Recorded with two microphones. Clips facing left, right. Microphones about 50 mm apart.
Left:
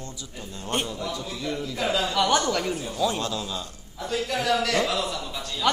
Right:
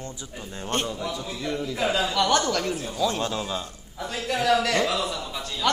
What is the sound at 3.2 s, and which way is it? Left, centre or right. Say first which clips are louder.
Speech: right 2 dB; right.